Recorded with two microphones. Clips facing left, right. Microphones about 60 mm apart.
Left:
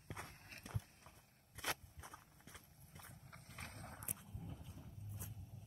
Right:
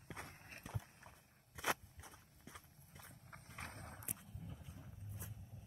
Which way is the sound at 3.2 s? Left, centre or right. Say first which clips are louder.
Right 4 dB; centre.